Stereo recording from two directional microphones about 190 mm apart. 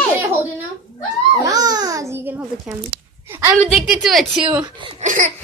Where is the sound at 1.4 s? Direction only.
20° right (ahead or behind).